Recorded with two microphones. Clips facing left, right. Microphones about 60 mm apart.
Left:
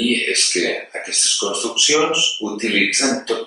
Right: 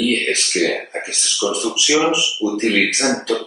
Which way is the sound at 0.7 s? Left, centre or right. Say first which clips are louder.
Right 1 dB; right.